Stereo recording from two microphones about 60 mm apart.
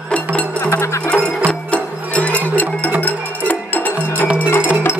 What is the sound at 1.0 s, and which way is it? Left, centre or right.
Music, left.